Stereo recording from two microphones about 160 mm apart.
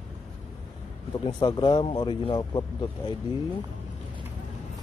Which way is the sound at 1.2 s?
30° left (ahead or behind).